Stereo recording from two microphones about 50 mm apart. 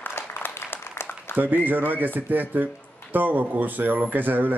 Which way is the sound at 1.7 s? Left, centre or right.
Right.